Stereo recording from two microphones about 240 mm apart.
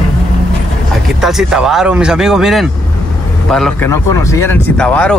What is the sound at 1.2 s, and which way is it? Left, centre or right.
Speech, centre.